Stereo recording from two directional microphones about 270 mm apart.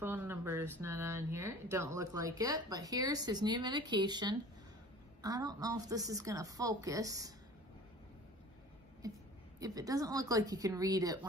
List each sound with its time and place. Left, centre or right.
0.0 s speech: centre
9.0 s speech: centre